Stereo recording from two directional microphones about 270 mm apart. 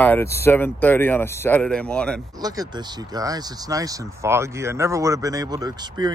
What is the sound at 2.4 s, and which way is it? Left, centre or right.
Speech, centre.